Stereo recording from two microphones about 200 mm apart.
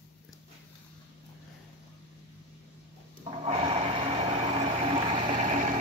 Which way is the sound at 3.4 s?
30° right (ahead or behind).